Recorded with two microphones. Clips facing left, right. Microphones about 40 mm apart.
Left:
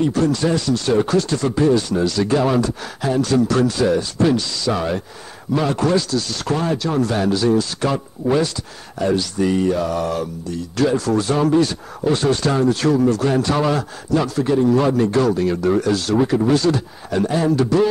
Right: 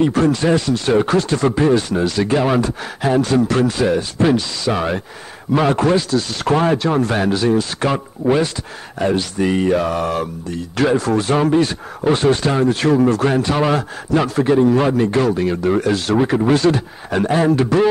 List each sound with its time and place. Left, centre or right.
0.0 s speech: right